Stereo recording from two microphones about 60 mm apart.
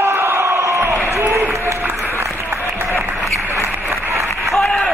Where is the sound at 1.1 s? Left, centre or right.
Right.